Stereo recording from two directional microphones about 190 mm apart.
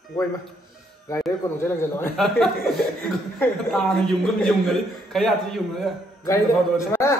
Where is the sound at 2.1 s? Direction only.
Centre (ahead or behind).